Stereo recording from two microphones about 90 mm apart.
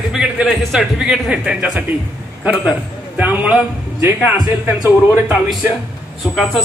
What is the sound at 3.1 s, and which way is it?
Speech, 15° right (ahead or behind).